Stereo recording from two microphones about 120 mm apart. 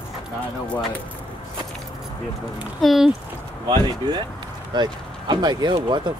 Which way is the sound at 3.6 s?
35° right (ahead or behind).